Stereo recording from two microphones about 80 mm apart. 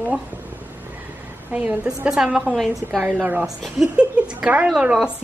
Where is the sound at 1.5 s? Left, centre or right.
Centre.